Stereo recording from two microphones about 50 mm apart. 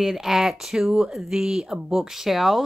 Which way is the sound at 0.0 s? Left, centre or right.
Centre.